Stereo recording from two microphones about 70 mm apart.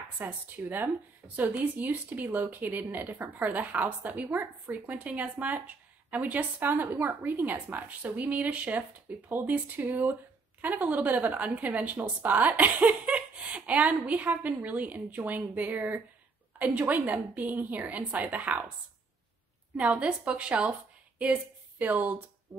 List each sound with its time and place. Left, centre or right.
0.2 s a woman's voice: right
19.8 s a woman's voice: centre